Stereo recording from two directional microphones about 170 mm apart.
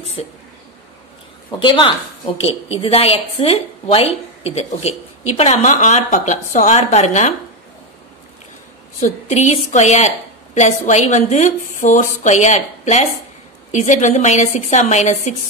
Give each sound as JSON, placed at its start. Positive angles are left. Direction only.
{"t": 1.6, "sound": "a woman's voice", "side_deg": 30}
{"t": 9.0, "sound": "a woman's voice", "side_deg": 45}